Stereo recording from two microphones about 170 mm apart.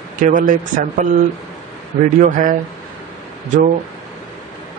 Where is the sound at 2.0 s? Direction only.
50° right (ahead or behind).